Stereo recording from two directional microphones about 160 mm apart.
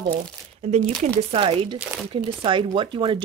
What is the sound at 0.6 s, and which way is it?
Speech, 40° right (ahead or behind).